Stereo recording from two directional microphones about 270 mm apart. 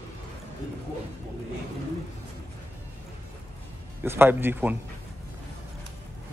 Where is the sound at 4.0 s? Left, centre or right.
Centre.